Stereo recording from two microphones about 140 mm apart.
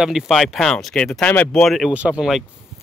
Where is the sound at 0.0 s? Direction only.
Centre (ahead or behind).